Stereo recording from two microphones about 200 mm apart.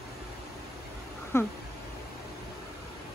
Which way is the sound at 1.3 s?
10° left (ahead or behind).